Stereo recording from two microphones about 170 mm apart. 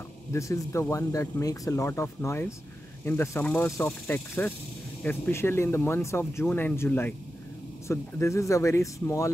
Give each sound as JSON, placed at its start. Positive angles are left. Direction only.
{"t": 0.3, "sound": "speech", "side_deg": 15}